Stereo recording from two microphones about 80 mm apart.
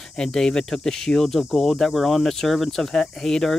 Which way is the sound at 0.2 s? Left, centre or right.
Centre.